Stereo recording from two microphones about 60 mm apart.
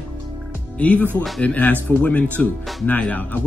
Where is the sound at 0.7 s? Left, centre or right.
Left.